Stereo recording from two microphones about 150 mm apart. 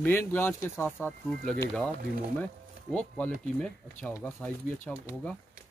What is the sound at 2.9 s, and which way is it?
Speech, 10° left (ahead or behind).